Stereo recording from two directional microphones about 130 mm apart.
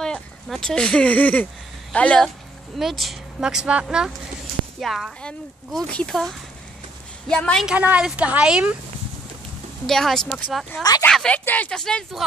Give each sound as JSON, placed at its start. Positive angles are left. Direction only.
{"t": 0.0, "sound": "speech", "side_deg": 5}
{"t": 7.6, "sound": "a woman's voice", "side_deg": -10}
{"t": 9.8, "sound": "speech", "side_deg": 5}
{"t": 10.8, "sound": "speech", "side_deg": 30}
{"t": 11.1, "sound": "speech", "side_deg": 10}